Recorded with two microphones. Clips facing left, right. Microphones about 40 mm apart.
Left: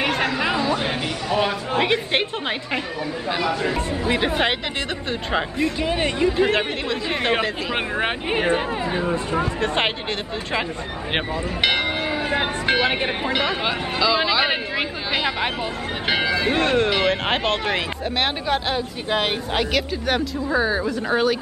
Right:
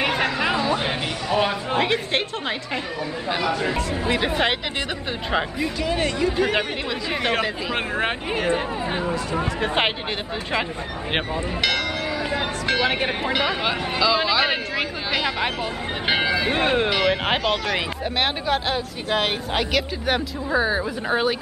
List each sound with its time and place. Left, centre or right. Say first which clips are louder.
0.0 s a sound: even; centre
1.8 s a woman's voice: left 2 dB; centre
3.3 s speech: even; centre
5.8 s speech: right 1 dB; left
8.3 s speech: left 4 dB; left
9.6 s speech: right 3 dB; centre
11.6 s church bell: left 3 dB; left
12.8 s speech: even; centre
16.1 s speech: even; centre
16.9 s speech: even; centre
17.4 s speech: left 1 dB; left
17.7 s speech: even; centre